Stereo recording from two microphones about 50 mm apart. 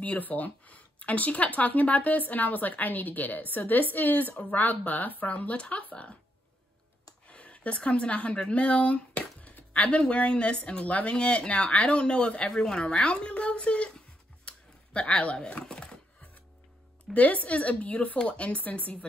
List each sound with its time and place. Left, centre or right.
0.0 s speech: left
7.2 s speech: left
12.4 s speech: centre
15.6 s chopping: centre
17.1 s speech: left